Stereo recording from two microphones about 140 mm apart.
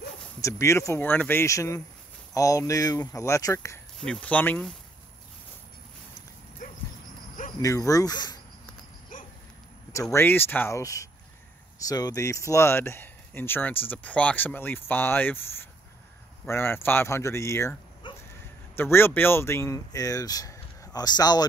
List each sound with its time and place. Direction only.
0.4 s speech: 20° left (ahead or behind)
4.0 s speech: 10° left (ahead or behind)
6.6 s dog: 65° left (ahead or behind)
7.6 s speech: 25° left (ahead or behind)
9.1 s dog: 75° left (ahead or behind)
10.1 s speech: 15° left (ahead or behind)
18.0 s a sound: 35° left (ahead or behind)
18.8 s speech: 15° left (ahead or behind)